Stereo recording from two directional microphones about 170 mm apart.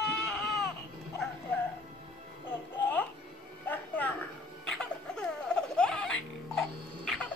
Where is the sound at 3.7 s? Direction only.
10° left (ahead or behind).